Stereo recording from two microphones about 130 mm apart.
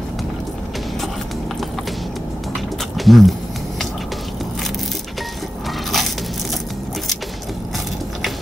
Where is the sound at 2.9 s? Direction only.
Centre (ahead or behind).